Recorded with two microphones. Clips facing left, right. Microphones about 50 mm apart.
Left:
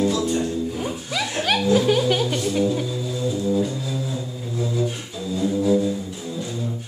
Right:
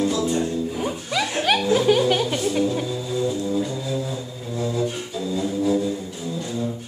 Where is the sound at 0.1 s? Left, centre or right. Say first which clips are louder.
Even; right.